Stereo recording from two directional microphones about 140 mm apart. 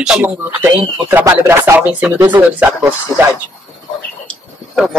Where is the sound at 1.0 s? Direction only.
20° right (ahead or behind).